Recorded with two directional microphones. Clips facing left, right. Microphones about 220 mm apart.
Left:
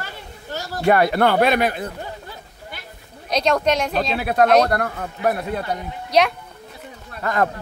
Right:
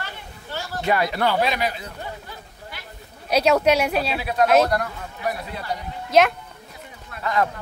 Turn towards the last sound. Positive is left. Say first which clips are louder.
# left 2 dB
turn(degrees=50)  # may be behind; listen again after turning